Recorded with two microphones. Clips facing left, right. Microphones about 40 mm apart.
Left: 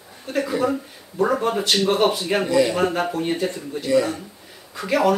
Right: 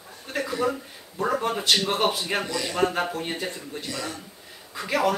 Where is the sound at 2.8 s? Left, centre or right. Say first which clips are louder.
Left 3 dB; centre.